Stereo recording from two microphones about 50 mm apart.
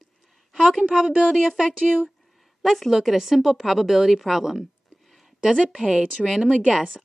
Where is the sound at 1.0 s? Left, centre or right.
Right.